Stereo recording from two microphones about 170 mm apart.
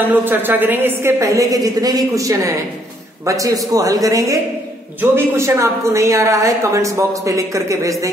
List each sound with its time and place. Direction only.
0.1 s a woman's voice: 10° right (ahead or behind)